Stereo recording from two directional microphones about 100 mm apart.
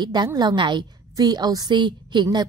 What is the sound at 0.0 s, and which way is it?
A woman's voice, 45° right (ahead or behind).